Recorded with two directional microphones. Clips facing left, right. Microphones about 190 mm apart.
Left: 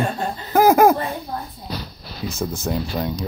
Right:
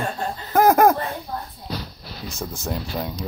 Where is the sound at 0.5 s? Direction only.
5° left (ahead or behind).